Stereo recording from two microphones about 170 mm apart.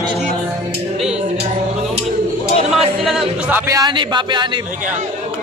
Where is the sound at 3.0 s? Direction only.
Centre (ahead or behind); by 4.5 s 25° right (ahead or behind).